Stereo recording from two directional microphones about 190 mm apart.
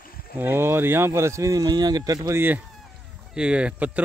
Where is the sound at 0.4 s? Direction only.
10° right (ahead or behind).